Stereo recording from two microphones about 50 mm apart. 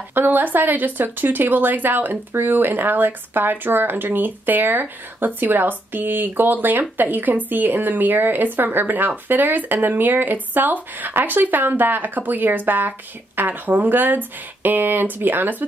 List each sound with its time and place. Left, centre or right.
0.1 s speech: right